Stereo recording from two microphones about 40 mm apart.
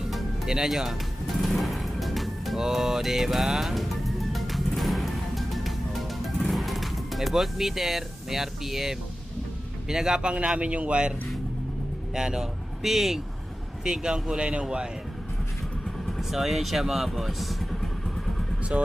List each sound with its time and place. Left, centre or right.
0.5 s music: centre
9.8 s speech: centre
10.2 s speech: right
12.1 s speech: centre
12.8 s speech: centre
13.8 s speech: centre
16.2 s speech: centre